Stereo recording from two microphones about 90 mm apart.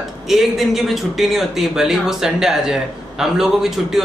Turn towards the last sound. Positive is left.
turn(degrees=-5)  # may be behind; listen again after turning